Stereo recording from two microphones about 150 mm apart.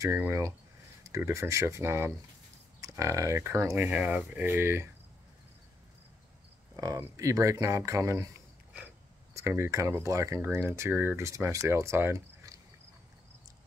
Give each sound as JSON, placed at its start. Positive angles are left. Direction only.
{"t": 0.0, "sound": "speech", "side_deg": -20}
{"t": 6.8, "sound": "speech", "side_deg": -20}